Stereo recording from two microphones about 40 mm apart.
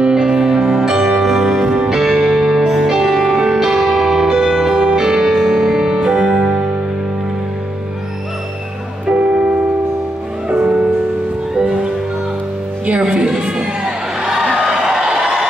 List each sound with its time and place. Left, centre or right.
0.1 s music: centre
9.3 s music: right
11.6 s music: right
12.9 s music: centre
13.4 s crowd: centre
14.5 s a sound: centre